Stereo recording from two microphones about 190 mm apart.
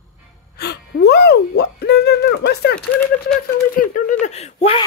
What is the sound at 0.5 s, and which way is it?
Gasp, 60° left (ahead or behind).